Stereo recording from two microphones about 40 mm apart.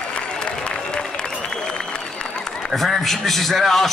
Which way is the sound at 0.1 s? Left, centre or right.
Left.